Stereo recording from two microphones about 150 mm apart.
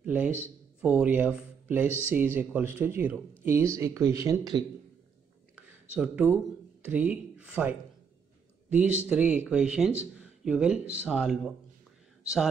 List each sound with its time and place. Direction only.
0.0 s a man's voice: 10° right (ahead or behind)
5.6 s speech: 10° right (ahead or behind)
8.7 s speech: 10° right (ahead or behind)